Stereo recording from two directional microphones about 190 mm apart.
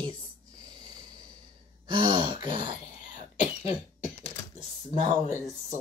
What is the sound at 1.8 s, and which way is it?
Gasp, 25° right (ahead or behind).